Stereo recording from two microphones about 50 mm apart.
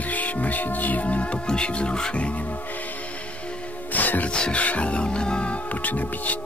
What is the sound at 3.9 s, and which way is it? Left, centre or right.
Music, left.